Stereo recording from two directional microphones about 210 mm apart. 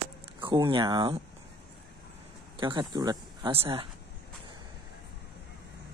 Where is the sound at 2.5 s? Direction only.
20° right (ahead or behind).